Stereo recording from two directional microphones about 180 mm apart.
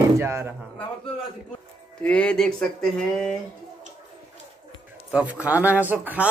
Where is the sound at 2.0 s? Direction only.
5° left (ahead or behind).